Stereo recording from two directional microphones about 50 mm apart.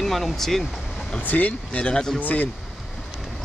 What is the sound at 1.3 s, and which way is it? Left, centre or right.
Speech, left.